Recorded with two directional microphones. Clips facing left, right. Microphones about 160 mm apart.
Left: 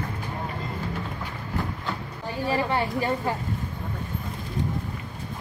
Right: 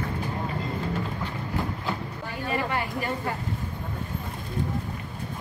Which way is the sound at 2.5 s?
30° left (ahead or behind).